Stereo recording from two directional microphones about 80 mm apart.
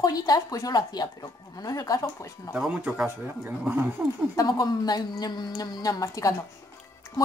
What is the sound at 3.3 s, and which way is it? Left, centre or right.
Speech, right.